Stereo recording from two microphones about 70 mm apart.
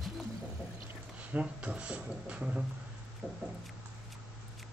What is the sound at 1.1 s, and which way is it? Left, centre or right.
Speech, centre.